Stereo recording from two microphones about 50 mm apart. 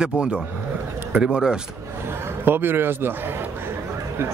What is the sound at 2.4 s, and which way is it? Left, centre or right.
Speech, right.